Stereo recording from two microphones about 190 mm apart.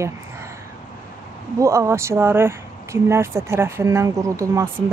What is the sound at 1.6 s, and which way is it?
Speech, 15° right (ahead or behind).